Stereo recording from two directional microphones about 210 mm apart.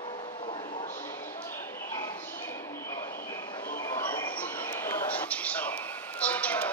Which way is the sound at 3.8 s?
10° left (ahead or behind).